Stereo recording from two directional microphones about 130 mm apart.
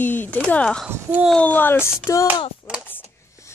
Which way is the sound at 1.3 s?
10° left (ahead or behind).